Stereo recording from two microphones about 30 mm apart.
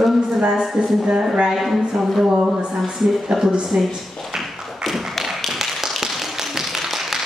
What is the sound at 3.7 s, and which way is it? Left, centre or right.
Speech, centre.